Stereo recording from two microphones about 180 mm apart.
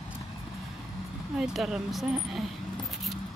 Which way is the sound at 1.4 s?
Centre (ahead or behind).